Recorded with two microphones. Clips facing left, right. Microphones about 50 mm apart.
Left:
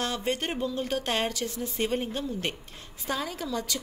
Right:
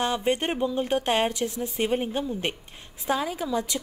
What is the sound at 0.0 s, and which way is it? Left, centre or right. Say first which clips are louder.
A woman's voice: right 5 dB; centre.